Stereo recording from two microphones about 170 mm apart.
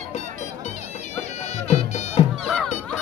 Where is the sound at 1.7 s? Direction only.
40° left (ahead or behind).